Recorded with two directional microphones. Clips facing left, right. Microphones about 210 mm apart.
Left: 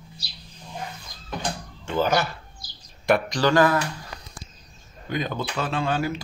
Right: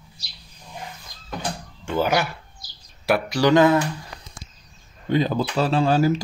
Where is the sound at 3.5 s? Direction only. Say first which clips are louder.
Right 4 dB; 20° right (ahead or behind).